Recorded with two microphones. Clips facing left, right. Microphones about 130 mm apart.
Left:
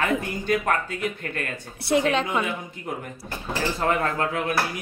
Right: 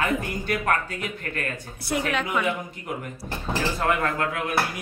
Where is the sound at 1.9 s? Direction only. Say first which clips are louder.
Left 5 dB; 25° left (ahead or behind).